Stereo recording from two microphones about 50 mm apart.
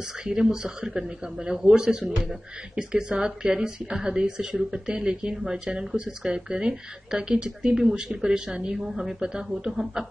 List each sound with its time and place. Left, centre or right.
0.2 s speech: centre